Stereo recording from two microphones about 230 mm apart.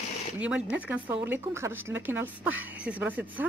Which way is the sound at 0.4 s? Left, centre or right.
Centre.